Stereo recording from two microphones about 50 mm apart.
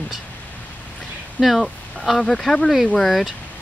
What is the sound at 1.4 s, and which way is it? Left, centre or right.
Speech, centre.